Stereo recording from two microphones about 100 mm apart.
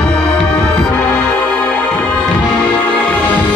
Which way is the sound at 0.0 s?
5° left (ahead or behind).